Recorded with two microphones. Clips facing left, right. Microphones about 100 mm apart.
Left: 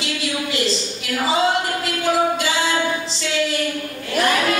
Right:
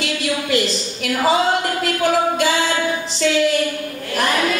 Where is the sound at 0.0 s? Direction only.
50° right (ahead or behind).